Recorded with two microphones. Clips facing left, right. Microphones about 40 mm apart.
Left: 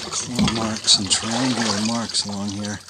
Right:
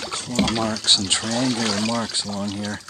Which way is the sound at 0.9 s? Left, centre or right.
Right.